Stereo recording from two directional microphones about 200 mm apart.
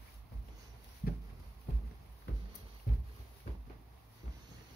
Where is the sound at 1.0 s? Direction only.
45° left (ahead or behind).